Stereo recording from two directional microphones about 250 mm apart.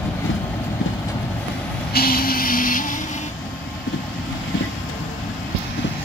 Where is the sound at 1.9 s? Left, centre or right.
Left.